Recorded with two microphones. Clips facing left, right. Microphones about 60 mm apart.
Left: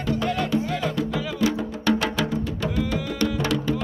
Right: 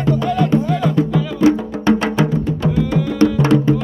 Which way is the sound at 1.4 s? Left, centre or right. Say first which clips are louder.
Right 10 dB; right.